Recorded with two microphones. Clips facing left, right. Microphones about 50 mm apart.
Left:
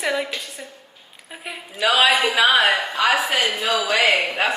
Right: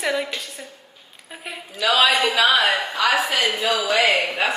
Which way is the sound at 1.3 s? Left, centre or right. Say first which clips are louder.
Even; centre.